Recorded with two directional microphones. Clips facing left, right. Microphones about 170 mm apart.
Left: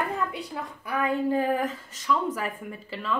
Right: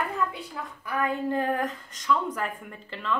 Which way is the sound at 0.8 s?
10° left (ahead or behind).